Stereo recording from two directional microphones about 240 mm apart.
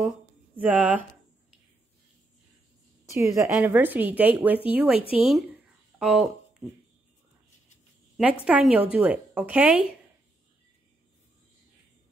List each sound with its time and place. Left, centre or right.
0.6 s a woman's voice: centre
3.1 s a woman's voice: centre
8.5 s speech: centre